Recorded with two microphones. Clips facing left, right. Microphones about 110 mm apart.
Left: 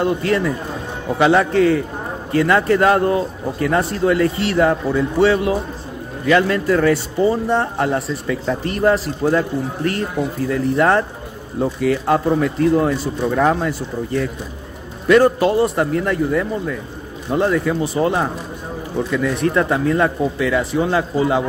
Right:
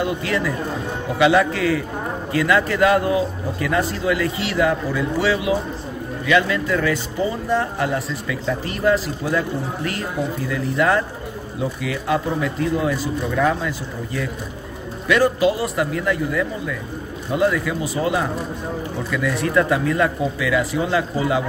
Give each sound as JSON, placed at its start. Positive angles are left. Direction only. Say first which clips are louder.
{"t": 0.0, "sound": "a man's voice", "louder": "left 4 dB", "side_deg": 40}